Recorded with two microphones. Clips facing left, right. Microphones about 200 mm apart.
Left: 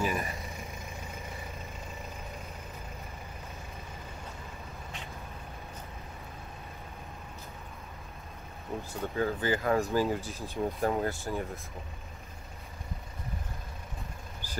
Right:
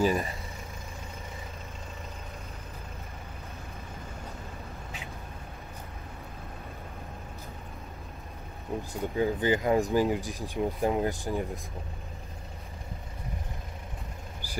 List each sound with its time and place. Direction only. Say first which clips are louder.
0.0 s speech: right 6 dB; 35° right (ahead or behind)
8.9 s speech: right 3 dB; 15° right (ahead or behind)
14.4 s vehicle: right 1 dB; 10° right (ahead or behind)